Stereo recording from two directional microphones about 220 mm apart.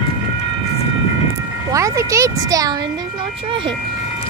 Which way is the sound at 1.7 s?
15° right (ahead or behind).